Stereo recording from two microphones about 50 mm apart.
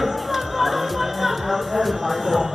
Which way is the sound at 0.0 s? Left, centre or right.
Centre.